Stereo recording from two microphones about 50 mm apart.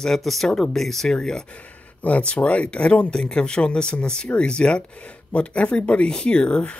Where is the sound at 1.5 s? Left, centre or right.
Left.